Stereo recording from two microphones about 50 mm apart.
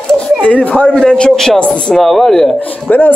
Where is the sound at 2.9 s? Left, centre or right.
Left.